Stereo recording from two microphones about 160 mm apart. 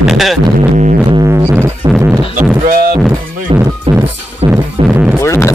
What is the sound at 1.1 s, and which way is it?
Music, 20° right (ahead or behind).